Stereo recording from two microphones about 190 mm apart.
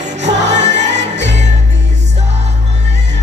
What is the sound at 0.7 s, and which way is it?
Music, 65° right (ahead or behind).